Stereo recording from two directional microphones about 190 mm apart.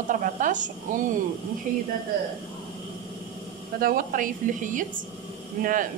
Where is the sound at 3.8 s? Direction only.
45° right (ahead or behind).